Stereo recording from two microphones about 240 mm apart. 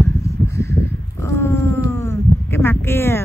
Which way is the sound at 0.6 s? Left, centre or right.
Centre.